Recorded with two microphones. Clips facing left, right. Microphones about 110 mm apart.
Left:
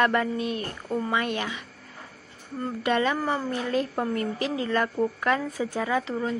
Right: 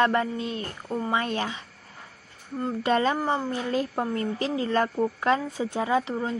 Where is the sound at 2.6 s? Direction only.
30° right (ahead or behind).